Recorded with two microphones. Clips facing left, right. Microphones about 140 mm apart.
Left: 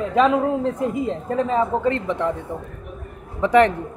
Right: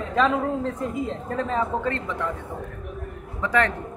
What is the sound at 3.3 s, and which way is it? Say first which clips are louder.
Speech: left 8 dB; 20° left (ahead or behind).